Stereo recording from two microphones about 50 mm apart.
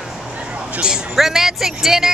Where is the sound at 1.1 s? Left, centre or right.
Centre.